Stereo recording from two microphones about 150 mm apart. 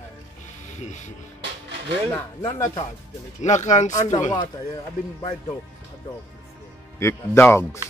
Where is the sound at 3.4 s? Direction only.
50° left (ahead or behind).